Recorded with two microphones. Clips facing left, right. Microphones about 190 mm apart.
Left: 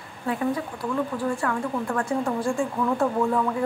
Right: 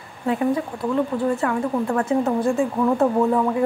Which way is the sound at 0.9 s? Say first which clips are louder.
Right 5 dB; 25° right (ahead or behind).